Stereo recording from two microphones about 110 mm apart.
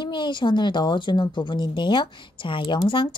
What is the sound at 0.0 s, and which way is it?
A woman's voice, 45° left (ahead or behind).